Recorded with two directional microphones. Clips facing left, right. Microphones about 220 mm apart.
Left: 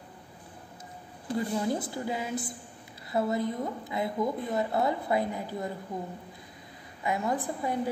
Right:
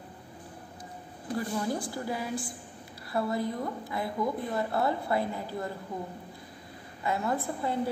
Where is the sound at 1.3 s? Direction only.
20° left (ahead or behind).